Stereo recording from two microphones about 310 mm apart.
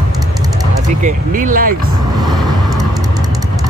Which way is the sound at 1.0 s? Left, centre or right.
Right.